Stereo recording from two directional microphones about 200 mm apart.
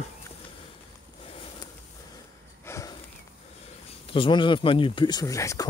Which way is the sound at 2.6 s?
15° left (ahead or behind).